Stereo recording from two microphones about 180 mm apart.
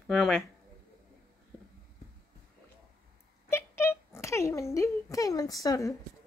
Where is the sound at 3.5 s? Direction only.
15° left (ahead or behind).